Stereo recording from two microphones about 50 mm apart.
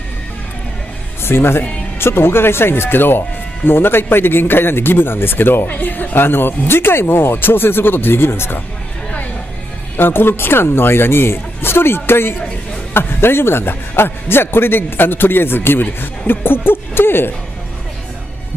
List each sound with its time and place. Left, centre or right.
1.2 s speech: left
9.9 s speech: left